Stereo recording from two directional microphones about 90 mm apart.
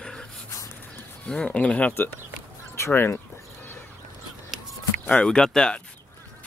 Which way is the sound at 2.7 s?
30° left (ahead or behind).